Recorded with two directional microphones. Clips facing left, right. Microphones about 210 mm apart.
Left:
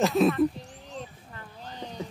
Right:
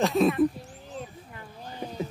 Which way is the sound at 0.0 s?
Centre (ahead or behind).